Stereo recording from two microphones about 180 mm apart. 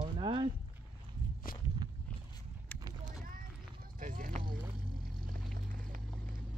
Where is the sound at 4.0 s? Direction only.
45° right (ahead or behind).